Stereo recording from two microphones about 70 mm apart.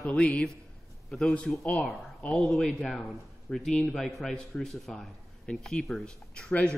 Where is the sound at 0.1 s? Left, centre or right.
Centre.